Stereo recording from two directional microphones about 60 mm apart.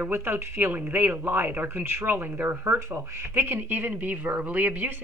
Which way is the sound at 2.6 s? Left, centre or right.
Right.